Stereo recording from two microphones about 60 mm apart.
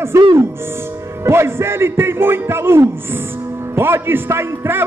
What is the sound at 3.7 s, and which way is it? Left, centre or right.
A man's voice, right.